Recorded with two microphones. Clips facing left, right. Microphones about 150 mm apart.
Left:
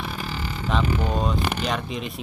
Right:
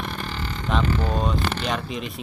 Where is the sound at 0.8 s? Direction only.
15° left (ahead or behind).